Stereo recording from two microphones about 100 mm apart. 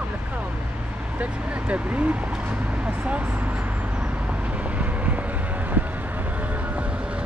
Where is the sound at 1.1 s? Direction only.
15° right (ahead or behind).